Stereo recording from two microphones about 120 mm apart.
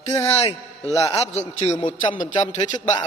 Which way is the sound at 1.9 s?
90° left.